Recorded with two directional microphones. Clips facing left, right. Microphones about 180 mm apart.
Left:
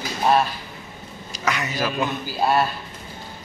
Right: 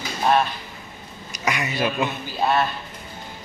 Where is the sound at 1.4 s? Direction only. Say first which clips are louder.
Even; 10° right (ahead or behind).